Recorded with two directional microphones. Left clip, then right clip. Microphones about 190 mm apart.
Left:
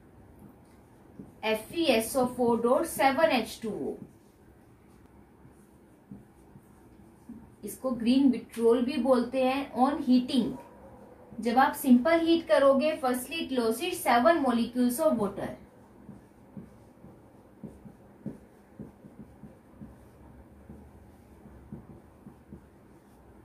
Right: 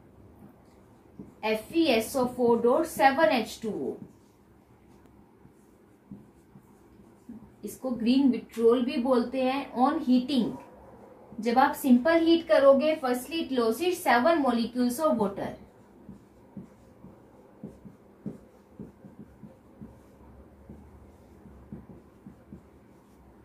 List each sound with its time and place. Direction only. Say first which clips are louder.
1.4 s a woman's voice: right 2 dB; 10° left (ahead or behind)
7.6 s a woman's voice: even; 10° left (ahead or behind)